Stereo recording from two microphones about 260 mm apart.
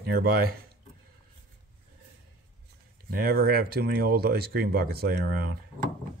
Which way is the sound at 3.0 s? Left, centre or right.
Right.